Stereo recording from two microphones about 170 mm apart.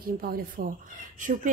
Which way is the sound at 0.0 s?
60° right (ahead or behind).